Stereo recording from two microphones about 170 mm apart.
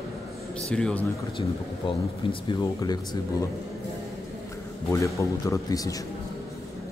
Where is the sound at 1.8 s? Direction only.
30° left (ahead or behind).